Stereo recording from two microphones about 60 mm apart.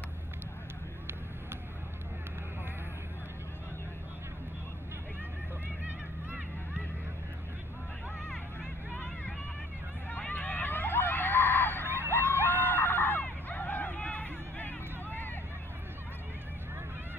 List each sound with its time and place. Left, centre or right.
8.9 s vehicle: left
10.1 s hubbub: centre
12.1 s screaming: left